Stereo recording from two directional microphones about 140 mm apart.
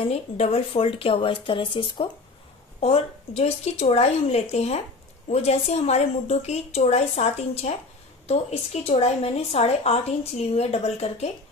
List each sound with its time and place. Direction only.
0.1 s speech: 45° left (ahead or behind)
2.8 s a woman's voice: 45° left (ahead or behind)